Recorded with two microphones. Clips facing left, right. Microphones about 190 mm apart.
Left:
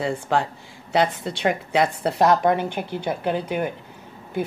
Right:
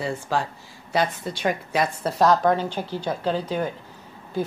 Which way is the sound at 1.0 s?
65° left (ahead or behind).